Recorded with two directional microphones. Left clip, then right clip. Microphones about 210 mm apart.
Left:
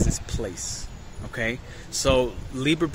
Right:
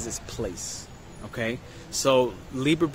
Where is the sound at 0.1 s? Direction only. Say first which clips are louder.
Left 1 dB; centre (ahead or behind).